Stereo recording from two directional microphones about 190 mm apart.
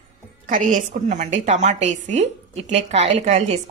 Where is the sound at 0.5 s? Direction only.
45° right (ahead or behind).